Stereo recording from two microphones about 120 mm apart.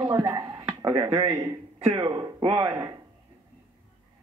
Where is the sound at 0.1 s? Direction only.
30° right (ahead or behind).